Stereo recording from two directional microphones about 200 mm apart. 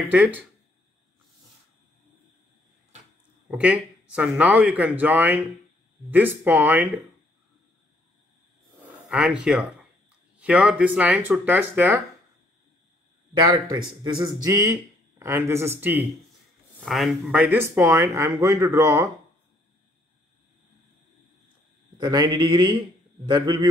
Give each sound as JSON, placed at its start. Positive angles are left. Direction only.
{"t": 0.1, "sound": "speech", "side_deg": -5}
{"t": 3.4, "sound": "speech", "side_deg": -5}
{"t": 9.1, "sound": "speech", "side_deg": -5}
{"t": 13.5, "sound": "speech", "side_deg": -20}
{"t": 21.9, "sound": "a man's voice", "side_deg": -20}